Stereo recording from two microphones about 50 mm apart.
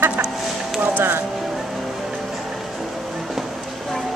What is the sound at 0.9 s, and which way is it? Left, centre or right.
Vehicle, right.